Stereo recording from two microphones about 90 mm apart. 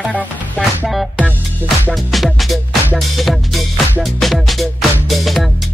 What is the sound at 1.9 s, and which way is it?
Music, centre (ahead or behind).